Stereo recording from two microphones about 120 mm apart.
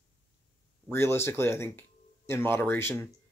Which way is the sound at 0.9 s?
20° left (ahead or behind).